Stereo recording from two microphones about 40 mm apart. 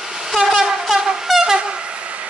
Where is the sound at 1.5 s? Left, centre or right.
Right.